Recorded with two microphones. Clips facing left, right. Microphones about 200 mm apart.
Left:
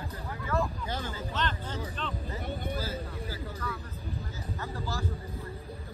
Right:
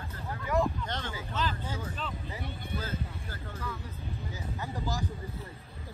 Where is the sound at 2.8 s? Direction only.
10° left (ahead or behind).